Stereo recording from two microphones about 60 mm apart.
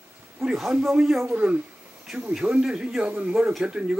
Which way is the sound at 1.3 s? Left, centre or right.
Centre.